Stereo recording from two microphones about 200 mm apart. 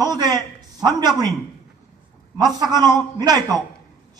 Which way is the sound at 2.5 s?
20° right (ahead or behind).